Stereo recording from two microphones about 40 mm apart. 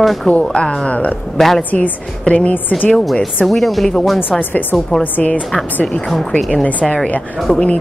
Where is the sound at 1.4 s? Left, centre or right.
Centre.